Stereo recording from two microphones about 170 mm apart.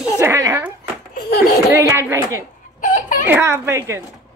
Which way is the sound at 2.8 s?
50° left (ahead or behind).